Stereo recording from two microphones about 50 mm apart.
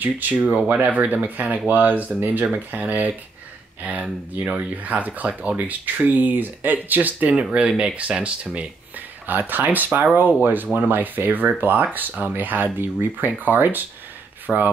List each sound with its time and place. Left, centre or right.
0.0 s speech: right
9.2 s speech: right
14.5 s speech: centre